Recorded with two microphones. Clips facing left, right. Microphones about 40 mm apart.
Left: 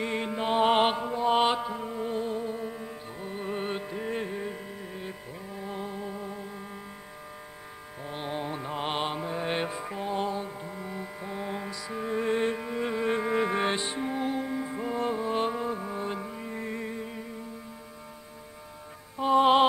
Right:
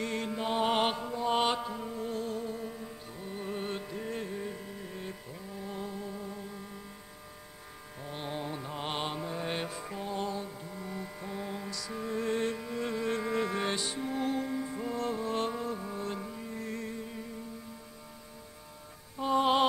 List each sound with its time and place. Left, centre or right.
0.0 s music: left
8.0 s music: centre
19.1 s music: left